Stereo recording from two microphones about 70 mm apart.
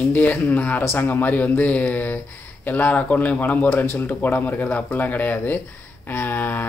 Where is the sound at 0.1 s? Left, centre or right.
Left.